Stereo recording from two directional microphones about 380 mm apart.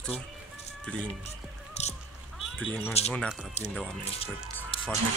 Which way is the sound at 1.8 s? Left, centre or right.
Centre.